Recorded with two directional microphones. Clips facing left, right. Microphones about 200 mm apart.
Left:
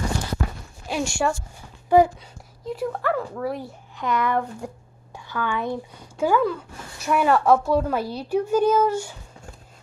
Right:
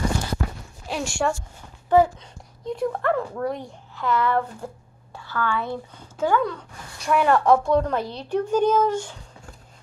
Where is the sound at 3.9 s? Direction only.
15° left (ahead or behind).